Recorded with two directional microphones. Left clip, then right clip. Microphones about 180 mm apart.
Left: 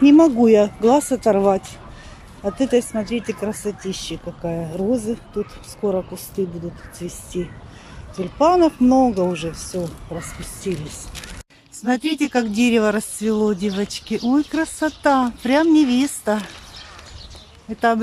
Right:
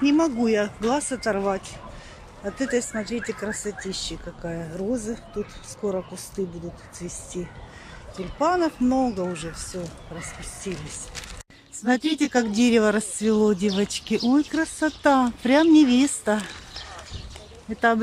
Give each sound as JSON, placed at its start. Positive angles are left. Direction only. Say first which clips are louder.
{"t": 0.0, "sound": "speech", "louder": "left 9 dB", "side_deg": 20}
{"t": 11.8, "sound": "speech", "louder": "left 2 dB", "side_deg": 0}
{"t": 17.7, "sound": "speech", "louder": "left 3 dB", "side_deg": 5}